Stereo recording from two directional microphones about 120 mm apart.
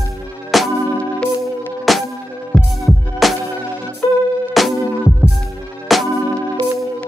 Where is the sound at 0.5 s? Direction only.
Centre (ahead or behind).